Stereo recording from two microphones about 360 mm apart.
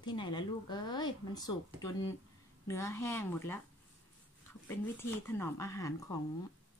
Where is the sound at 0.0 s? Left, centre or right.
Centre.